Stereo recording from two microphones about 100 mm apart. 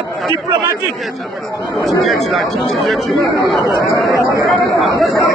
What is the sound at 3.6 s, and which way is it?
Speech, 35° left (ahead or behind).